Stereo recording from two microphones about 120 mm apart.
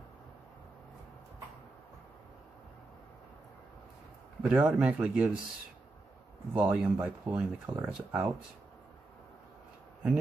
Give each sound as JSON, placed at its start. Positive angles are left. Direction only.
{"t": 4.4, "sound": "speech", "side_deg": -10}
{"t": 6.5, "sound": "speech", "side_deg": -15}